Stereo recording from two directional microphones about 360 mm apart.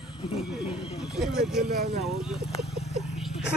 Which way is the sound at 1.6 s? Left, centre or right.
Centre.